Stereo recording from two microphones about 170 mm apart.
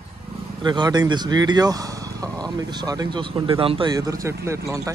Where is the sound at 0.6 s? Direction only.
25° right (ahead or behind).